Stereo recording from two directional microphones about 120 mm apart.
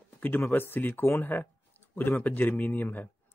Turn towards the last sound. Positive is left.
turn(degrees=15)  # may be behind; listen again after turning